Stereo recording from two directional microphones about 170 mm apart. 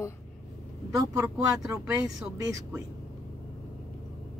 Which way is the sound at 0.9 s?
20° right (ahead or behind).